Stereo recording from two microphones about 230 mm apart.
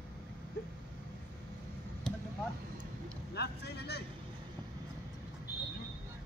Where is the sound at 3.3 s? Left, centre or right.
Left.